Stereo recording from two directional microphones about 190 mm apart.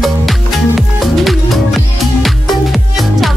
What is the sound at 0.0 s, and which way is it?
Music, centre (ahead or behind).